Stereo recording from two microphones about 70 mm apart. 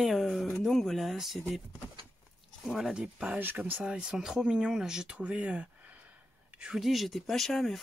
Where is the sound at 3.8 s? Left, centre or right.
Centre.